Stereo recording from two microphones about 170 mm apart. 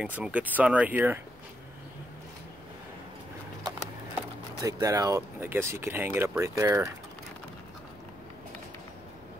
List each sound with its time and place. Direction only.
0.0 s speech: 10° right (ahead or behind)
4.6 s speech: 20° right (ahead or behind)